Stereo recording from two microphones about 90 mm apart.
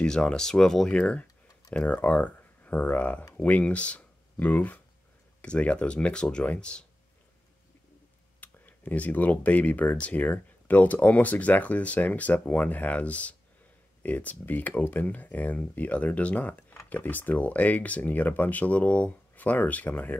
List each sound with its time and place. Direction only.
0.0 s speech: 10° left (ahead or behind)
8.4 s speech: 20° left (ahead or behind)